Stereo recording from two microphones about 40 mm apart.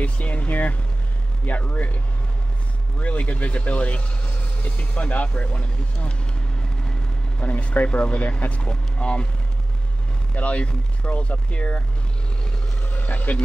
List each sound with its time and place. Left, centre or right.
0.0 s speech: left
3.0 s speech: left
7.3 s speech: left
10.3 s speech: left
12.8 s vehicle: left